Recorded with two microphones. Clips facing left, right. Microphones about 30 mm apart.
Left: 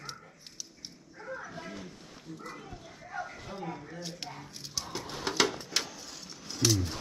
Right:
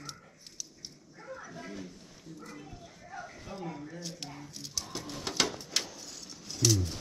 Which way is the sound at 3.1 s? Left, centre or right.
Left.